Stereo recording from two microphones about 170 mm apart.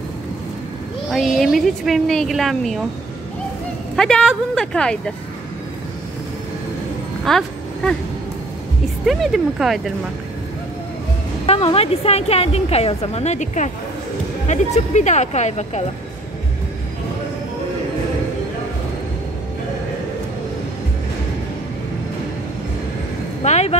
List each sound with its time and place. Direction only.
1.1 s a woman's voice: centre (ahead or behind)
3.9 s a woman's voice: 5° left (ahead or behind)
7.2 s a sound: centre (ahead or behind)
9.0 s a woman's voice: centre (ahead or behind)
11.4 s a woman's voice: 35° left (ahead or behind)
23.4 s vehicle: 40° left (ahead or behind)